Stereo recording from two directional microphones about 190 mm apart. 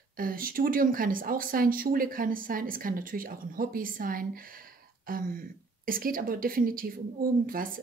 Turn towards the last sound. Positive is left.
turn(degrees=-50)  # may be behind; listen again after turning